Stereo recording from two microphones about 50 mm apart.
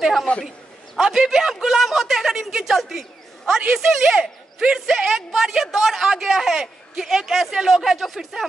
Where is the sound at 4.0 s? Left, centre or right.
Centre.